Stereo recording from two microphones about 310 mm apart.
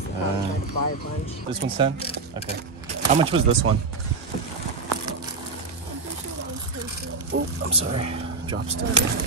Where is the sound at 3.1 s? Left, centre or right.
Centre.